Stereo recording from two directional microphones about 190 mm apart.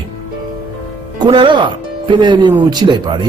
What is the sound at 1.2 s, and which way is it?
A man's voice, 25° right (ahead or behind).